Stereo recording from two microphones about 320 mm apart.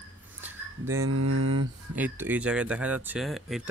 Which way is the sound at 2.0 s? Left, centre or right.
Centre.